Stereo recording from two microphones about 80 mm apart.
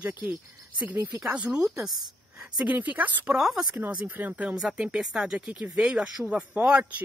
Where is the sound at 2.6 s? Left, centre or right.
Centre.